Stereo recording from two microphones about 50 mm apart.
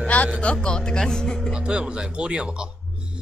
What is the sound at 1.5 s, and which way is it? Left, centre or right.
Speech, centre.